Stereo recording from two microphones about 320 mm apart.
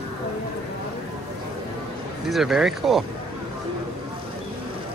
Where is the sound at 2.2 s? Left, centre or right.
Centre.